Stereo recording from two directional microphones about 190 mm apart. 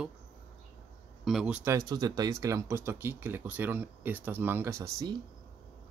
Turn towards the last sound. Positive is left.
turn(degrees=-15)  # may be behind; listen again after turning